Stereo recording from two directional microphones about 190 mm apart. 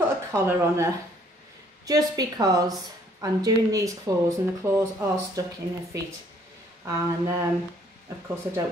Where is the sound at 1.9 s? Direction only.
20° right (ahead or behind).